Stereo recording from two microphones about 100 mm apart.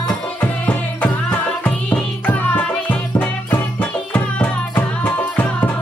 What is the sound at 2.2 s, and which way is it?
Music, 15° left (ahead or behind).